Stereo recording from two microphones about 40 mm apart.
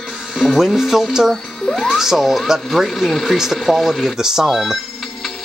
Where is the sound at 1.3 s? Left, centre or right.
Centre.